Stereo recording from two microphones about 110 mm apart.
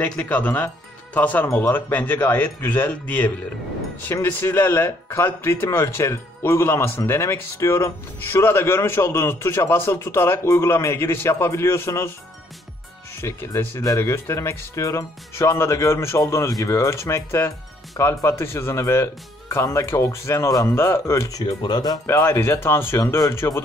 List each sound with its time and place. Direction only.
0.0 s speech: 15° left (ahead or behind)
13.2 s speech: 20° left (ahead or behind)
21.5 s speech: 40° left (ahead or behind)
22.0 s speech: 25° left (ahead or behind)